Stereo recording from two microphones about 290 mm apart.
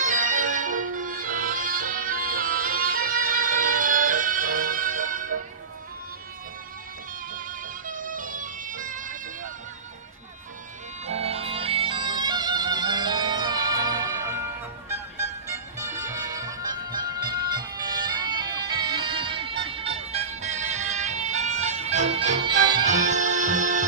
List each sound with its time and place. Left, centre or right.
0.0 s music: right
7.3 s music: right
11.1 s music: right
15.4 s music: centre; by 23.9 s right